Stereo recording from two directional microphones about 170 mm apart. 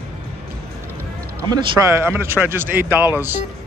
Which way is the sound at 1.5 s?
15° right (ahead or behind).